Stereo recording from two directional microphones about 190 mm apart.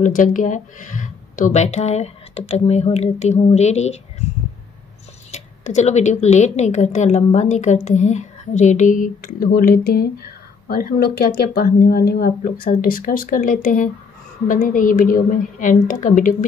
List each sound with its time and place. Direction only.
0.0 s speech: 45° left (ahead or behind)
5.3 s speech: 40° left (ahead or behind)